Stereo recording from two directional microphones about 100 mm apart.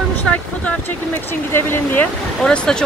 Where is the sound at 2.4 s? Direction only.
5° left (ahead or behind).